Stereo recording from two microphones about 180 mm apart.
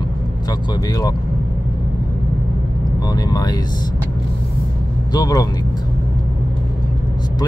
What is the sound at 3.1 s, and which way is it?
Speech, 20° left (ahead or behind).